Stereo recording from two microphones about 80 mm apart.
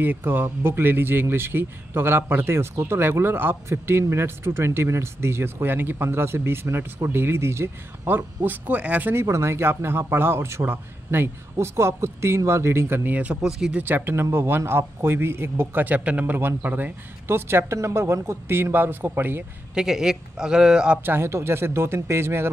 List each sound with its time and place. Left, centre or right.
0.0 s speech: right
8.5 s speech: centre
9.1 s speech: right; by 13.4 s centre
13.4 s a man's voice: centre
13.7 s speech: right
19.7 s a man's voice: centre
21.0 s speech: right